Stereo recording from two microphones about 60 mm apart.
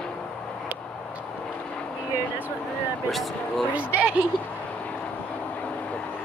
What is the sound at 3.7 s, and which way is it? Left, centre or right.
Speech, right.